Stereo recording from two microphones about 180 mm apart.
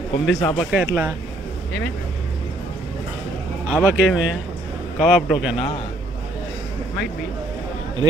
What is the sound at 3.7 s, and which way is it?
Speech, 5° right (ahead or behind).